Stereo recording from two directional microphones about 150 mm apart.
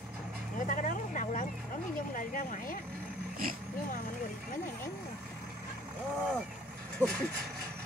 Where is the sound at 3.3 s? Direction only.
75° right (ahead or behind).